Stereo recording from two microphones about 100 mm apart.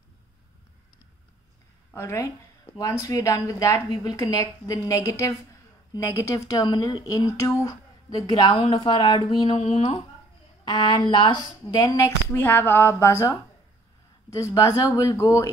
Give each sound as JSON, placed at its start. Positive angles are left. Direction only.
{"t": 2.0, "sound": "a woman's voice", "side_deg": 30}
{"t": 7.1, "sound": "speech", "side_deg": 35}
{"t": 9.6, "sound": "speech", "side_deg": 90}
{"t": 10.6, "sound": "a woman's voice", "side_deg": 40}
{"t": 12.3, "sound": "a woman's voice", "side_deg": 20}